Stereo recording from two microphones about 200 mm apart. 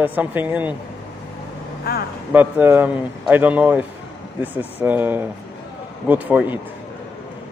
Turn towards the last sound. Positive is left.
turn(degrees=-10)  # may be behind; listen again after turning